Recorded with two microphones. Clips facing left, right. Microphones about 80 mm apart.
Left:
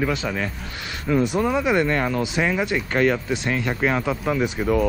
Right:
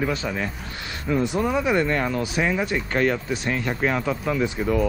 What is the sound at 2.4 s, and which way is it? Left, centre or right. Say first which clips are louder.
Speech: left 1 dB; left.